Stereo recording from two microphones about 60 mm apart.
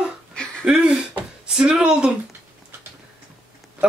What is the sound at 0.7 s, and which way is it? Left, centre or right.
Speech, centre.